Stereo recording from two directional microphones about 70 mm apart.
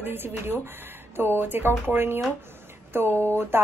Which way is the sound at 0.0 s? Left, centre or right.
Right.